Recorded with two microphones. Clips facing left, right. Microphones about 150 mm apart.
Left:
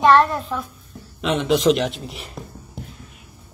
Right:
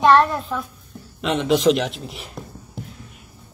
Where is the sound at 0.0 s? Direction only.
Centre (ahead or behind).